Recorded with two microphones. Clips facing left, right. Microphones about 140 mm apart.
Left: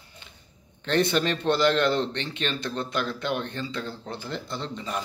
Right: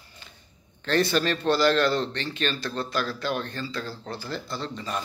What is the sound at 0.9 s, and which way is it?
Speech, 20° left (ahead or behind).